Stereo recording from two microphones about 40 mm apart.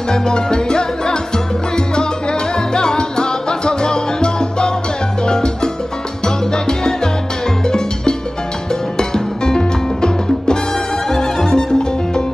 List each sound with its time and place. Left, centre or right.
0.1 s music: centre
2.7 s salsa music: centre
5.2 s music: centre
6.2 s salsa music: centre
7.6 s music: centre